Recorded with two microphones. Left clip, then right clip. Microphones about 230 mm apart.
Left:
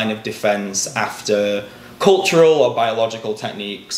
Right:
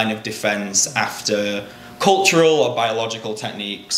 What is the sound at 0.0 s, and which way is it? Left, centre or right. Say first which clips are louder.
Speech: left 1 dB; centre.